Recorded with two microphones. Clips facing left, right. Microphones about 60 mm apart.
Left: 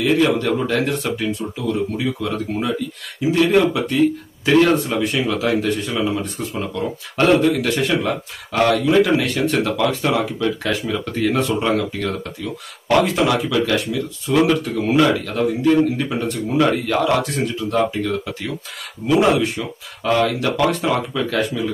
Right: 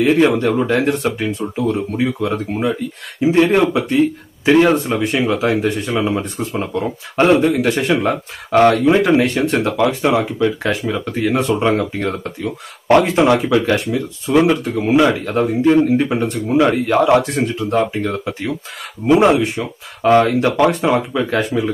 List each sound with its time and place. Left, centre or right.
0.0 s speech: right
4.5 s speech: centre
8.0 s speech: right
20.0 s speech: right